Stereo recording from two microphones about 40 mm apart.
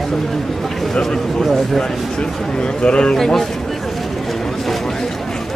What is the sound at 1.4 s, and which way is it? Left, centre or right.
Speech, centre.